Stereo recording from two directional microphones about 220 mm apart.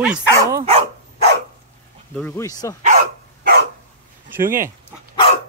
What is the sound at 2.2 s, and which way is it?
Speech, 15° left (ahead or behind).